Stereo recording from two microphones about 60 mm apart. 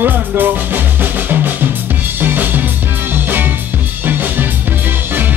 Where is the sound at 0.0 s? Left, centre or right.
Right.